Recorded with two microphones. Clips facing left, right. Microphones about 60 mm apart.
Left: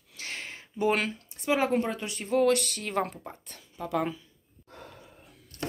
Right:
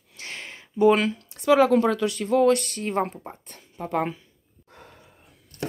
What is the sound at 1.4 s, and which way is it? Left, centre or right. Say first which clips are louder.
Speech: right 8 dB; right.